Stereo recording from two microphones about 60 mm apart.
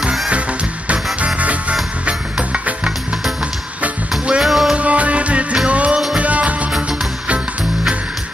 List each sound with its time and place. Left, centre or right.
1.2 s music: right
4.4 s music: centre
4.7 s music: right
5.9 s music: centre
6.2 s music: right